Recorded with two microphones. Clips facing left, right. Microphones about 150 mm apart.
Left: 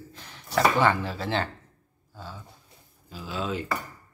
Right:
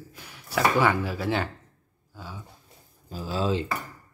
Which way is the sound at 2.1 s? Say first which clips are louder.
Even; 10° right (ahead or behind).